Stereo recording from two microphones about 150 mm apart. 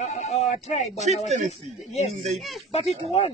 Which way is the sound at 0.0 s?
50° left (ahead or behind).